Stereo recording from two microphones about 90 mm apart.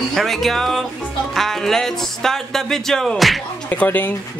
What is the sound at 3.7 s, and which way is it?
Speech, 20° left (ahead or behind).